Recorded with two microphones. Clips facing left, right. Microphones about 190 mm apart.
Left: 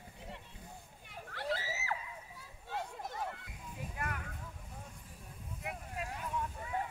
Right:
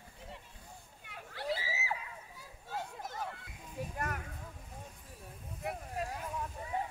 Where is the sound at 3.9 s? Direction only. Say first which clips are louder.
Right 1 dB; 45° right (ahead or behind).